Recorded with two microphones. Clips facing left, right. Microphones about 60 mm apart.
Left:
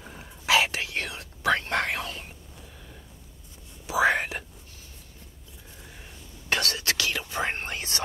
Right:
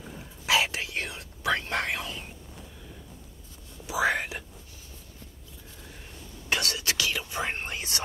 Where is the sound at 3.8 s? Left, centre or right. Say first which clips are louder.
Left 3 dB; left.